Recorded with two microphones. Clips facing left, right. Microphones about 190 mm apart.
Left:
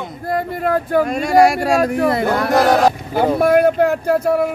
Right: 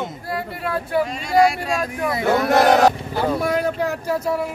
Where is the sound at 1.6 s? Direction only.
70° left (ahead or behind).